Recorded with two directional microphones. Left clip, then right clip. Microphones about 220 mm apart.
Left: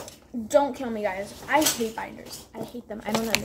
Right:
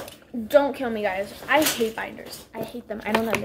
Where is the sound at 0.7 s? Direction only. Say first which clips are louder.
Right 3 dB; 5° left (ahead or behind).